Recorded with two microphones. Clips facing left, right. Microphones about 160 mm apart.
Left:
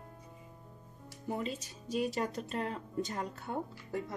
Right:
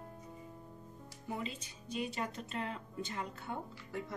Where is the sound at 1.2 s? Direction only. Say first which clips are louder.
Left 5 dB; 45° left (ahead or behind).